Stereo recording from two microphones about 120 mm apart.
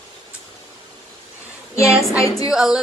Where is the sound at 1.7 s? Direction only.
25° left (ahead or behind).